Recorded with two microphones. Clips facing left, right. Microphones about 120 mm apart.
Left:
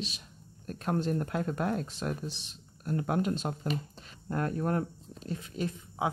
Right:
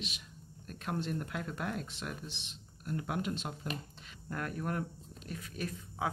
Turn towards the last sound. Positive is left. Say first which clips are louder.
# left 5 dB
turn(degrees=25)  # may be behind; listen again after turning